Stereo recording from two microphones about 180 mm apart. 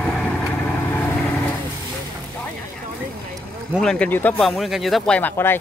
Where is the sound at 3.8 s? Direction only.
5° left (ahead or behind).